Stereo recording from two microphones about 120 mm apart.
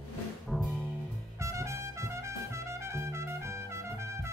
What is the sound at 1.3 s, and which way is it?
Trumpet, 25° right (ahead or behind).